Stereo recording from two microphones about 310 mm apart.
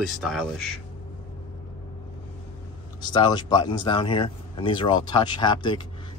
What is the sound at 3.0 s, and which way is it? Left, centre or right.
Speech, centre.